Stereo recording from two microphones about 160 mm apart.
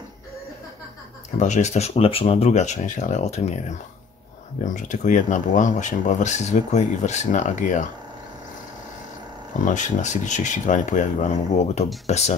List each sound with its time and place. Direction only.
1.4 s speech: 45° left (ahead or behind)
9.7 s speech: 50° left (ahead or behind)